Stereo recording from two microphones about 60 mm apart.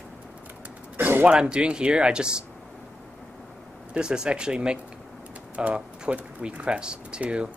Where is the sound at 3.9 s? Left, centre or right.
Centre.